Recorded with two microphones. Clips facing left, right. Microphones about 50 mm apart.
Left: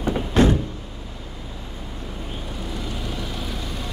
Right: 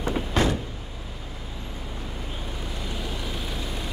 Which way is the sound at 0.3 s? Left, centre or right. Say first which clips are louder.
Left 7 dB; left.